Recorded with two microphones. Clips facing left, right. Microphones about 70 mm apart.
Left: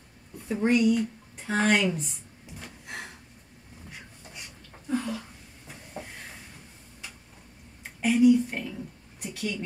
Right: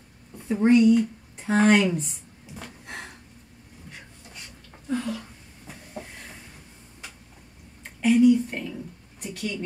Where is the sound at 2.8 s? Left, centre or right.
Centre.